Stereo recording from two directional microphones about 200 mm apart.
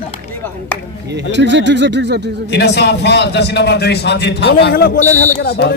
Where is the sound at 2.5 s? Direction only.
55° left (ahead or behind); by 5.3 s 40° left (ahead or behind).